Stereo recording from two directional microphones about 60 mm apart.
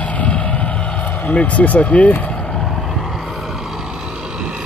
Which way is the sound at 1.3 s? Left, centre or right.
Left.